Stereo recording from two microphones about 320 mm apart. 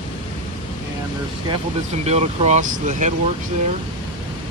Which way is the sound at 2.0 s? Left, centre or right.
Centre.